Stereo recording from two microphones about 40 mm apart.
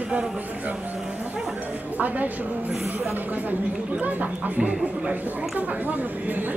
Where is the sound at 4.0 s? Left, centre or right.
Right.